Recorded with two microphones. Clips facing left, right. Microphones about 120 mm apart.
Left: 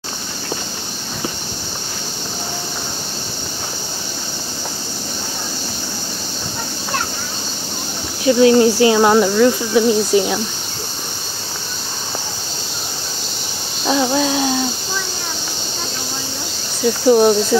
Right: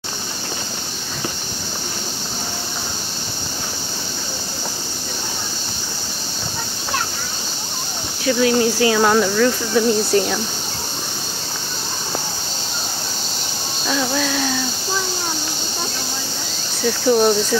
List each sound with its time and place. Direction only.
8.3 s speech: 30° left (ahead or behind); by 10.4 s 10° left (ahead or behind)
13.8 s a sound: 25° left (ahead or behind)
17.1 s speech: 5° left (ahead or behind)